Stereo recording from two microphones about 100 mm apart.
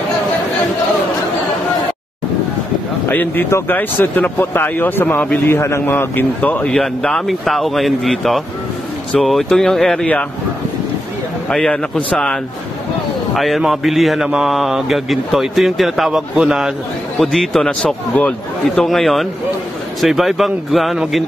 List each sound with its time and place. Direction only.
3.1 s speech: 20° left (ahead or behind)
5.6 s speech: 30° left (ahead or behind)
6.7 s speech: 5° left (ahead or behind)
11.4 s a man's voice: 10° left (ahead or behind)